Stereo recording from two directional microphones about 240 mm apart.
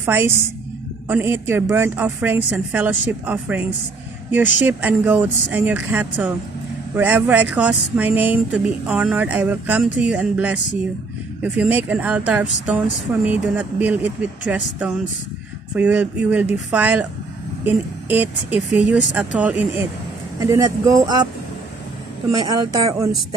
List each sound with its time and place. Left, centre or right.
0.0 s a woman's voice: centre
22.3 s a woman's voice: centre